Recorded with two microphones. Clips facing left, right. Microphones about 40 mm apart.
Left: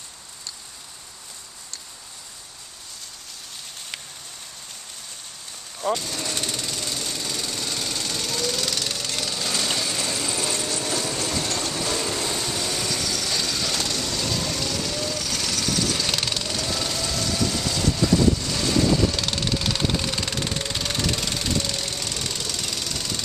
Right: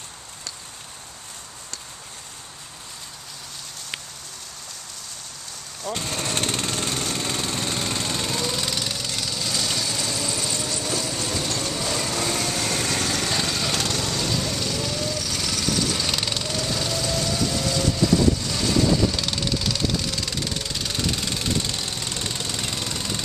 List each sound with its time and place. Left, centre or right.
5.9 s lawn mower: right; by 8.8 s centre
8.8 s vehicle: centre
12.2 s vehicle: right
13.4 s vehicle: centre
14.1 s lawn mower: centre
17.1 s vehicle: centre; by 20.6 s left
20.7 s music: left
21.6 s engine knocking: right; by 23.2 s centre